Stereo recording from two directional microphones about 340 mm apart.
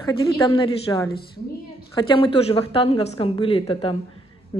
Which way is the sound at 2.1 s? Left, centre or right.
Centre.